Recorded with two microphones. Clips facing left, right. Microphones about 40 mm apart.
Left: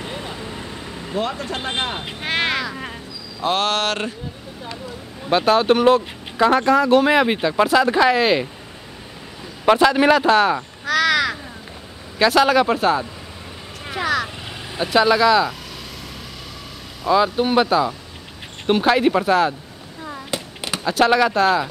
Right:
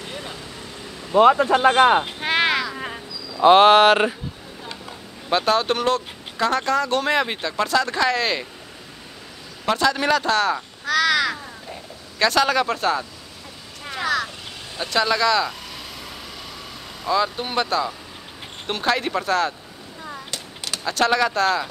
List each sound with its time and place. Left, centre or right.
0.0 s vehicle: centre
1.1 s speech: right
2.1 s a sound: centre
3.4 s a sound: right
5.3 s speech: centre
9.7 s speech: centre
10.9 s crow: centre
12.2 s speech: centre
17.0 s speech: centre
20.2 s a sound: left
20.8 s speech: centre